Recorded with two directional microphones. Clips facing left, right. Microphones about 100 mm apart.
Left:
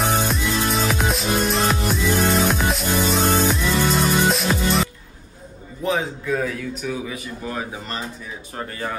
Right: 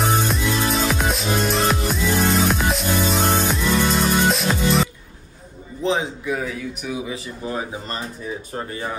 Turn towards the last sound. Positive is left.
turn(degrees=-30)  # may be behind; listen again after turning